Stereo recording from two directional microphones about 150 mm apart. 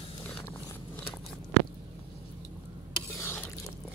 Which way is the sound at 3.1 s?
15° left (ahead or behind).